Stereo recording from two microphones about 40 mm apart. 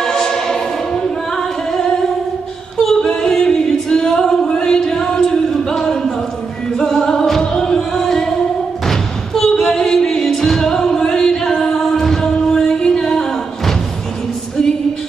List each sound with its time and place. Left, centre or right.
0.0 s singing: centre
6.8 s music: centre